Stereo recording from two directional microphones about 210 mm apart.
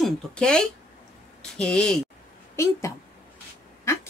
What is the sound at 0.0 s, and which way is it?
Speech, 5° left (ahead or behind).